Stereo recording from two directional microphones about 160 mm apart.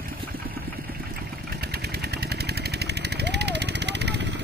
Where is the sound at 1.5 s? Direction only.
80° right.